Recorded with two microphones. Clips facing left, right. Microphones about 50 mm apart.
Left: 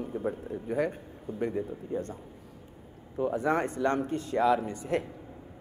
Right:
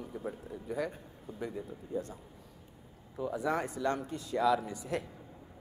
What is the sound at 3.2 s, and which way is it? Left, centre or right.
Speech, left.